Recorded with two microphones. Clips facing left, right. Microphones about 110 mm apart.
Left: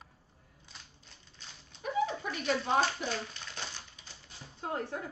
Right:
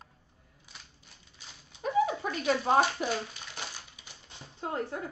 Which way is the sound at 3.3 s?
10° right (ahead or behind).